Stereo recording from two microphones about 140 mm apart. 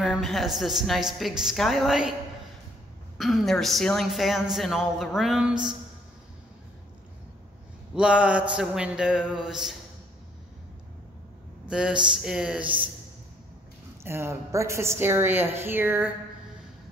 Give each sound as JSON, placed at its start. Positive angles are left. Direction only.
{"t": 0.0, "sound": "a woman's voice", "side_deg": 0}
{"t": 3.2, "sound": "a woman's voice", "side_deg": 0}
{"t": 7.9, "sound": "a woman's voice", "side_deg": -5}
{"t": 11.7, "sound": "a woman's voice", "side_deg": -5}
{"t": 14.0, "sound": "a woman's voice", "side_deg": -20}